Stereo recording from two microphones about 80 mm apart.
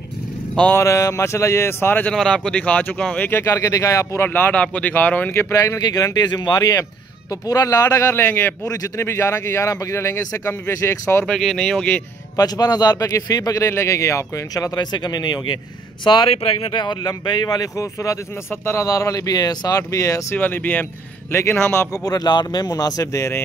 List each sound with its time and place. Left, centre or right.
0.7 s speech: left
2.1 s speech: centre
3.4 s speech: left
4.2 s speech: left
5.9 s a man's voice: left
8.6 s a man's voice: left
9.0 s speech: left
11.2 s speech: centre
12.4 s a man's voice: left
16.0 s a man's voice: left
20.3 s speech: left
21.9 s a man's voice: left